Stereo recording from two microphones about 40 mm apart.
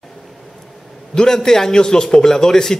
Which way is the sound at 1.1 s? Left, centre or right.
Centre.